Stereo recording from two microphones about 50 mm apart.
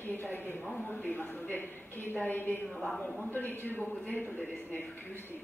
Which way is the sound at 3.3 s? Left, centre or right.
Left.